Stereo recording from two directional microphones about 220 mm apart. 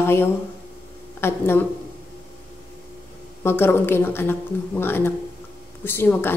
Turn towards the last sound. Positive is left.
turn(degrees=10)  # may be behind; listen again after turning